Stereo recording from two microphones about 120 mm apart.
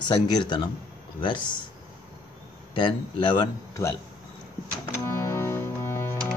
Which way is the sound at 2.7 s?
40° left (ahead or behind).